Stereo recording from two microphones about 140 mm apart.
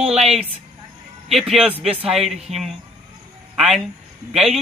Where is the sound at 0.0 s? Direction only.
45° right (ahead or behind).